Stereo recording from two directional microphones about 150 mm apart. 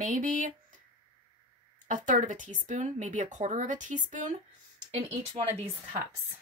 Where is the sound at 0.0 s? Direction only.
60° right (ahead or behind).